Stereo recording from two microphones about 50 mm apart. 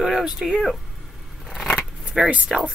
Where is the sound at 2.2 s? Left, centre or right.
Right.